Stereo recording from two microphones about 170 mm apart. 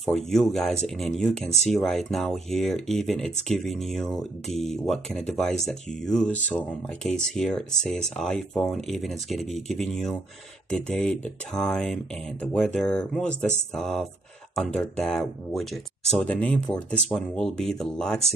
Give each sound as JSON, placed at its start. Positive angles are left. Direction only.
{"t": 0.0, "sound": "speech", "side_deg": 0}